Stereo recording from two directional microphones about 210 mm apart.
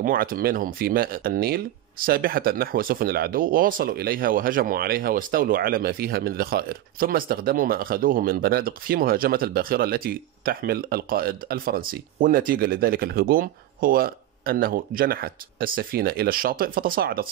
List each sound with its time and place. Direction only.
0.0 s speech: 40° right (ahead or behind)